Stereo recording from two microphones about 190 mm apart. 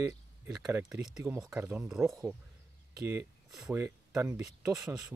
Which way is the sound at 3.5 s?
Centre (ahead or behind).